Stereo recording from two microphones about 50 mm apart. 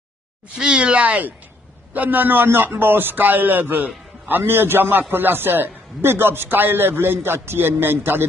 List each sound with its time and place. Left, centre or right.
0.6 s a man's voice: centre; by 4.4 s right
4.4 s a man's voice: right